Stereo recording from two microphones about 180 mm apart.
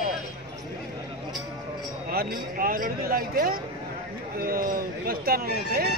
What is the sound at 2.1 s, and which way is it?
Speech, 55° right (ahead or behind).